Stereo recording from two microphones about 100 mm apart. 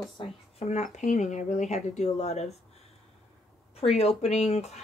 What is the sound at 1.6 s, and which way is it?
Speech, 90° left.